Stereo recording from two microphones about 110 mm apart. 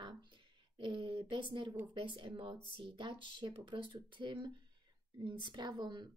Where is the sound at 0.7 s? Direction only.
50° right (ahead or behind).